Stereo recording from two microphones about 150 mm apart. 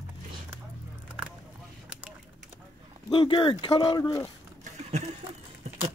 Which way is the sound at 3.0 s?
30° left (ahead or behind).